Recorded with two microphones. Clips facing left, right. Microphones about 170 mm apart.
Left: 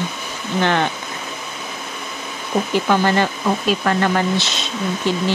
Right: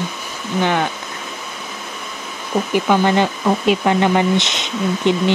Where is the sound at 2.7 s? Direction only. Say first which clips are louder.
Right 2 dB; 15° right (ahead or behind).